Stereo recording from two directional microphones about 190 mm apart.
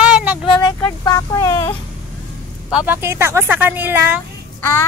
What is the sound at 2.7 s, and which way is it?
Speech, 10° right (ahead or behind).